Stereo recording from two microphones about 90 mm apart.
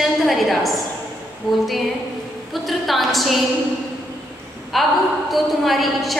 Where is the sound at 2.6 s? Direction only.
Centre (ahead or behind).